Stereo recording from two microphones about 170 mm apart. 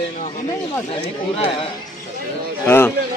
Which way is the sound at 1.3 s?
35° left (ahead or behind).